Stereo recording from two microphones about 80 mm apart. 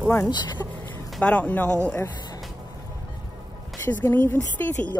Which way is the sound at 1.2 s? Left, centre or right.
Centre.